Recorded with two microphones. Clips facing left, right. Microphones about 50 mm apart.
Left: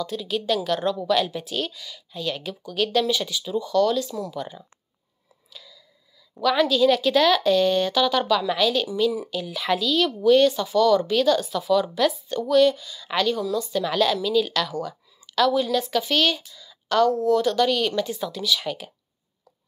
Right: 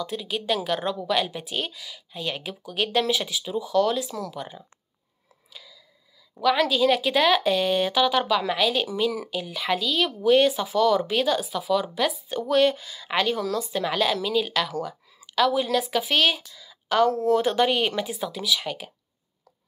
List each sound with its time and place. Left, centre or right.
0.0 s speech: centre
4.3 s speech: centre
5.5 s clicking: centre
6.4 s speech: centre
8.8 s speech: right
9.3 s speech: centre
10.2 s speech: right
12.4 s a woman's voice: right; by 17.1 s centre
17.2 s speech: right
18.0 s speech: centre